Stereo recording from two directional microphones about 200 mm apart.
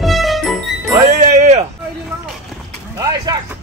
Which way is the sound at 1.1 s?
35° right (ahead or behind).